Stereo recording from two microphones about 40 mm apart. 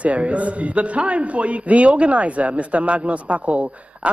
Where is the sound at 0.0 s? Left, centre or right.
Right.